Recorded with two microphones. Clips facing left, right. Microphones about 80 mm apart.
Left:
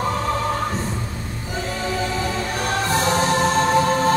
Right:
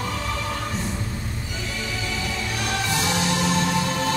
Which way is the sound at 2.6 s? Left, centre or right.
Left.